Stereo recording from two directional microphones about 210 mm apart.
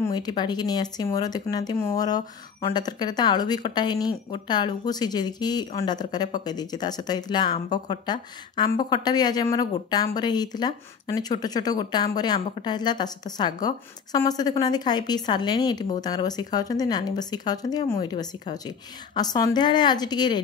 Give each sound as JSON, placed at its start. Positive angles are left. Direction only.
{"t": 0.0, "sound": "speech", "side_deg": 20}